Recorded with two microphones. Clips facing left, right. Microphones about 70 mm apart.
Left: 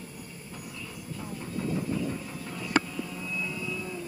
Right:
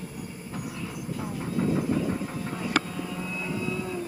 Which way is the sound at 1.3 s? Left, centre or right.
Right.